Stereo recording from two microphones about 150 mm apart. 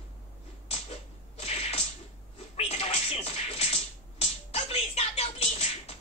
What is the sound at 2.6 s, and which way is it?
Music, 45° left (ahead or behind).